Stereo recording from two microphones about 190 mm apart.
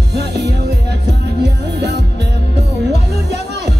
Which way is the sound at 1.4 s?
65° right (ahead or behind).